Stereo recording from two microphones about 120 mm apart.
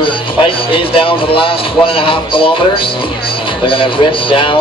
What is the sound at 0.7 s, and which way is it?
A man's voice, 45° left (ahead or behind).